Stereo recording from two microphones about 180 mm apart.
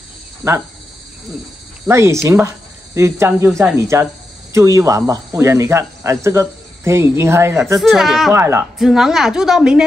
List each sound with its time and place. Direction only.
0.4 s speech: 15° right (ahead or behind)
1.9 s speech: 15° right (ahead or behind)
7.8 s a woman's voice: centre (ahead or behind)
8.3 s speech: 15° right (ahead or behind)
8.7 s a woman's voice: centre (ahead or behind)